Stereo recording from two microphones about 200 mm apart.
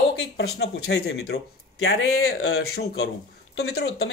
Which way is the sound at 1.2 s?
60° left (ahead or behind).